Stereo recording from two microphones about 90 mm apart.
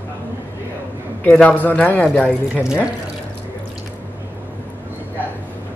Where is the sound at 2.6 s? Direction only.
10° right (ahead or behind).